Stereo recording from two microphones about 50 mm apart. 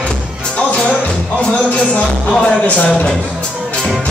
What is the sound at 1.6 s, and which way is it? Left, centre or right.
Music, left.